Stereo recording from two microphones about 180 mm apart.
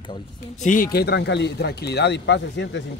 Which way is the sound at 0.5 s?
45° left (ahead or behind).